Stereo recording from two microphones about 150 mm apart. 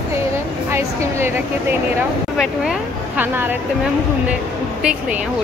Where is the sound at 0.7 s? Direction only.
15° right (ahead or behind).